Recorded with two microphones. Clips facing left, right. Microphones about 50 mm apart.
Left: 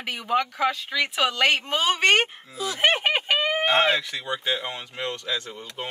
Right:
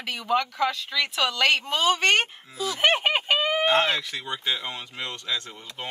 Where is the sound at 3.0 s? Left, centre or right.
Centre.